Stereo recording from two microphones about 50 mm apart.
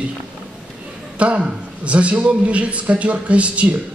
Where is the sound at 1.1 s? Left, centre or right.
Right.